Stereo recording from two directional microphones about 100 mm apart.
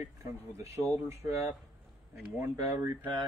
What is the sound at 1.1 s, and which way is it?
Speech, 25° right (ahead or behind).